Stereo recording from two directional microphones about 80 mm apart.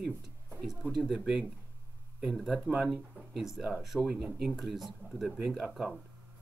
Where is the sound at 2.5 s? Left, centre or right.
Centre.